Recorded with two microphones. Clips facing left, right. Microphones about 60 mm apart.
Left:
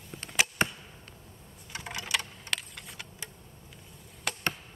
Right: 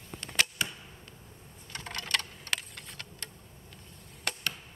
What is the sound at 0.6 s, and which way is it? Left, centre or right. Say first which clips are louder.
Arrow: left 6 dB; left.